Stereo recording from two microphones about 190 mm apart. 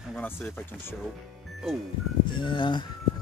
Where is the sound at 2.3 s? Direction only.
25° left (ahead or behind).